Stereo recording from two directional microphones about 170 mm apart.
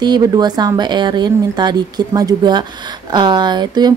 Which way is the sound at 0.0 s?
25° right (ahead or behind).